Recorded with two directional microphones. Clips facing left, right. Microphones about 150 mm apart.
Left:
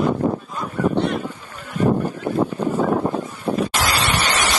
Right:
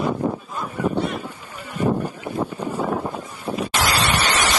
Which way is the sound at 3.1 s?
40° left (ahead or behind).